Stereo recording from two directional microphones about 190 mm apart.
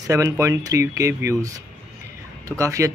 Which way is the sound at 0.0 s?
15° right (ahead or behind).